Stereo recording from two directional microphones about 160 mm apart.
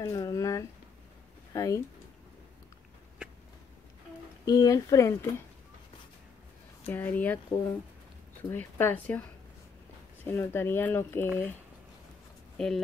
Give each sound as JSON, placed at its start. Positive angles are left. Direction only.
{"t": 0.0, "sound": "speech", "side_deg": 20}
{"t": 4.5, "sound": "speech", "side_deg": 25}
{"t": 6.9, "sound": "speech", "side_deg": 10}
{"t": 10.2, "sound": "speech", "side_deg": 15}
{"t": 12.5, "sound": "speech", "side_deg": 5}